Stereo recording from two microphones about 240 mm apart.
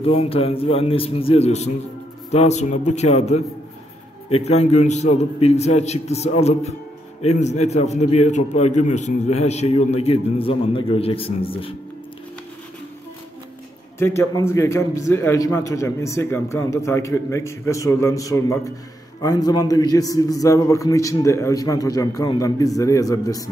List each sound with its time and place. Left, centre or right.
0.0 s a man's voice: left
13.9 s a man's voice: centre